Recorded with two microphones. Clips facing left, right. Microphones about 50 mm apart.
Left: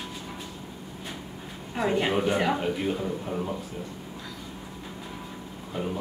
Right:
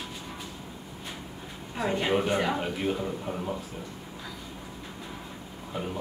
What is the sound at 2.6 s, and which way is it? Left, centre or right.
Speech, centre.